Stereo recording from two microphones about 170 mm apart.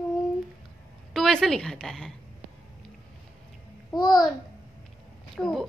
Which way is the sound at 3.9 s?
25° left (ahead or behind).